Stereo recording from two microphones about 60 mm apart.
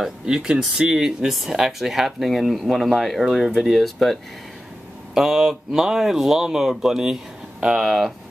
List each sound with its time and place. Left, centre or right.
0.0 s speech: centre